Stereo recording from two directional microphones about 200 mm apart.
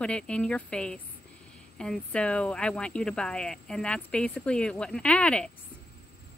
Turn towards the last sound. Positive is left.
turn(degrees=5)  # may be behind; listen again after turning